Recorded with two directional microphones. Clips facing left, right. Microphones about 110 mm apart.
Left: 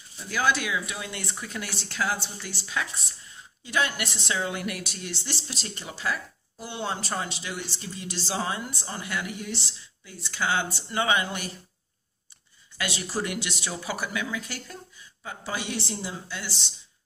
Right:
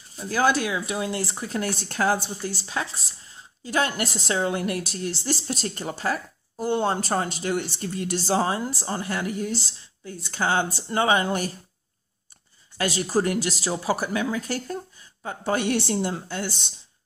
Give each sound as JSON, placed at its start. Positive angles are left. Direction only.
{"t": 0.1, "sound": "speech", "side_deg": -40}
{"t": 12.7, "sound": "speech", "side_deg": -40}
{"t": 15.2, "sound": "a woman's voice", "side_deg": -55}